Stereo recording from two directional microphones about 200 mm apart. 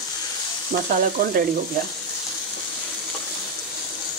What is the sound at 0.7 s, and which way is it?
Frying, 45° right (ahead or behind).